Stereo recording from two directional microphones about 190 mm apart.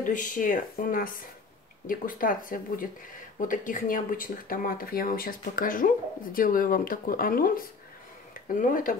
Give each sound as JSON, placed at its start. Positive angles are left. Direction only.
{"t": 0.0, "sound": "speech", "side_deg": 45}